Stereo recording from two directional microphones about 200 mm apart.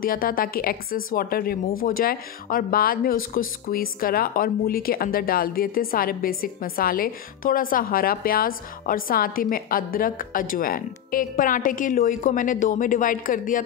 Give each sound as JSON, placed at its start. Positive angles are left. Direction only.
{"t": 0.0, "sound": "speech", "side_deg": 45}